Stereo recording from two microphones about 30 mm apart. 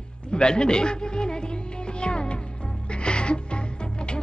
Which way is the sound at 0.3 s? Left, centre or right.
Left.